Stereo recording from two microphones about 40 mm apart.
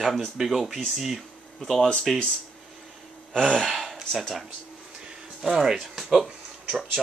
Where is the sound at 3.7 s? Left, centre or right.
Centre.